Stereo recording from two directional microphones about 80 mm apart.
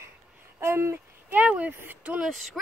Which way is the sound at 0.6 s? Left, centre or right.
Right.